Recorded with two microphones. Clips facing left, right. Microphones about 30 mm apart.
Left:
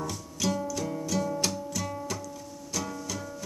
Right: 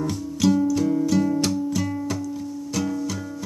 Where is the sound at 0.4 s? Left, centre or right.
Right.